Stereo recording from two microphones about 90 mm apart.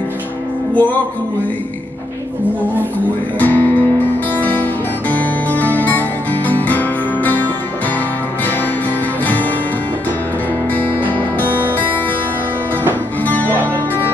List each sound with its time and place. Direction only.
0.7 s music: 20° left (ahead or behind)
3.3 s music: 20° left (ahead or behind)
9.2 s music: 20° left (ahead or behind)
10.7 s music: 20° left (ahead or behind)
13.2 s music: 20° left (ahead or behind)